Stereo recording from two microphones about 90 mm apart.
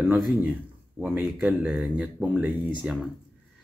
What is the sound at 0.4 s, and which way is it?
Speech, 20° right (ahead or behind).